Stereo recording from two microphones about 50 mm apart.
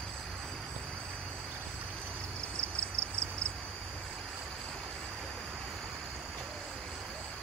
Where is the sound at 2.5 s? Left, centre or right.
Centre.